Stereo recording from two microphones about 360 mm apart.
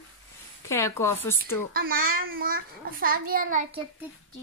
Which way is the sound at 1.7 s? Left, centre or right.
Right.